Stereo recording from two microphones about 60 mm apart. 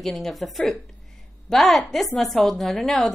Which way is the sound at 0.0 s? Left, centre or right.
Centre.